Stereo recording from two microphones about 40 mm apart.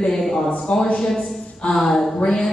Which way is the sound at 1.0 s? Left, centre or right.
Centre.